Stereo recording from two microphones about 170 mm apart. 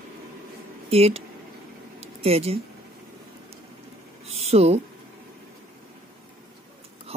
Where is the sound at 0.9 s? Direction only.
35° right (ahead or behind).